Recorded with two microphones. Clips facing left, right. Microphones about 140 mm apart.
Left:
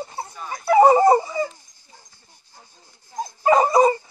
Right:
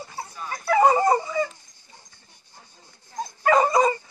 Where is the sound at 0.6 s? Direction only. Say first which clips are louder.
Left 5 dB; 25° left (ahead or behind).